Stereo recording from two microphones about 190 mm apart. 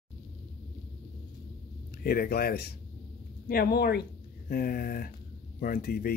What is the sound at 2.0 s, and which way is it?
Speech, 50° left (ahead or behind).